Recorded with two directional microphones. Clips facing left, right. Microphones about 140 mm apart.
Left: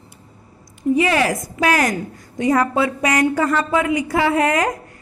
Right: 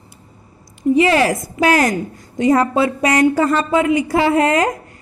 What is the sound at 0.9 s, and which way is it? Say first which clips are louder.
A woman's voice: right 3 dB; 30° right (ahead or behind).